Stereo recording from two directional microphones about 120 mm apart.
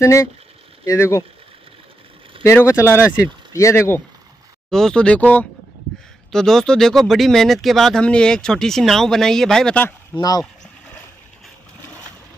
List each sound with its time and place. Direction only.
0.0 s speech: 25° left (ahead or behind)
2.4 s speech: 20° left (ahead or behind)
4.6 s speech: 5° left (ahead or behind)